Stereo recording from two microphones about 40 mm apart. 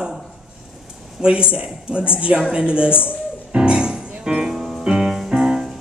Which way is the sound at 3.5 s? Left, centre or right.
Right.